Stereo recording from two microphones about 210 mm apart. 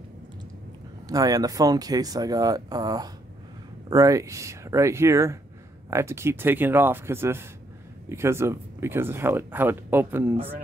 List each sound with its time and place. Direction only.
1.0 s speech: 15° right (ahead or behind)